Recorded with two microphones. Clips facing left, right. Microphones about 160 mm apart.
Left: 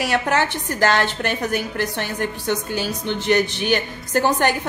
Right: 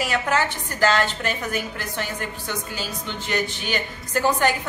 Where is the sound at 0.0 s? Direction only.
70° left (ahead or behind).